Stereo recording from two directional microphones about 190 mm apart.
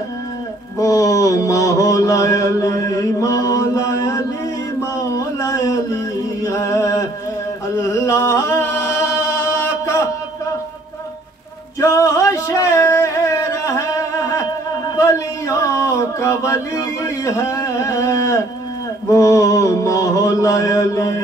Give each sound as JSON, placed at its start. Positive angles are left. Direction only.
{"t": 0.7, "sound": "mantra", "side_deg": 15}
{"t": 5.1, "sound": "a sound", "side_deg": 15}
{"t": 6.4, "sound": "music", "side_deg": 15}
{"t": 11.8, "sound": "music", "side_deg": 15}
{"t": 15.0, "sound": "a sound", "side_deg": 15}
{"t": 19.0, "sound": "mantra", "side_deg": 15}